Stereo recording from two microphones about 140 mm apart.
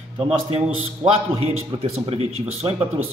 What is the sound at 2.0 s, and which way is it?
Speech, 45° right (ahead or behind).